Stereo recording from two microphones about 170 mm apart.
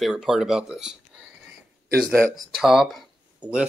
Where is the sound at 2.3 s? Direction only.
Centre (ahead or behind).